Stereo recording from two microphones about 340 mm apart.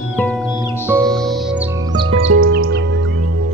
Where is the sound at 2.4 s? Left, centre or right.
Right.